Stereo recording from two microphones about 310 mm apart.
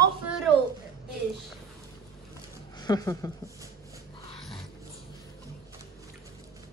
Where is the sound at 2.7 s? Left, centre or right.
Centre.